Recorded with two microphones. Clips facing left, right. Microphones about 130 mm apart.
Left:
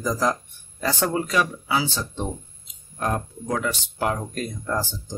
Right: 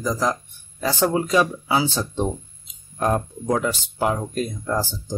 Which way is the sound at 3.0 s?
25° right (ahead or behind).